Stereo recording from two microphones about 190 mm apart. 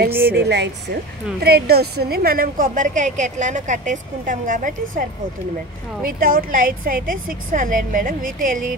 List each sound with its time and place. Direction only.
0.1 s a woman's voice: 10° right (ahead or behind)
0.4 s a woman's voice: 60° right (ahead or behind); by 5.0 s 45° right (ahead or behind)
6.0 s a woman's voice: 50° right (ahead or behind)